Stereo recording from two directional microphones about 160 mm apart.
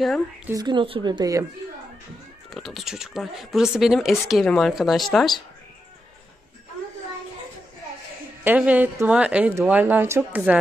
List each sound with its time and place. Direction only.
0.5 s speech: 25° right (ahead or behind)
2.5 s speech: centre (ahead or behind)
8.5 s speech: 10° right (ahead or behind)